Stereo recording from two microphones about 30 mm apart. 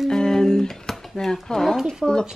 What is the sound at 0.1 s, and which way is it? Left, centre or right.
Guitar, left.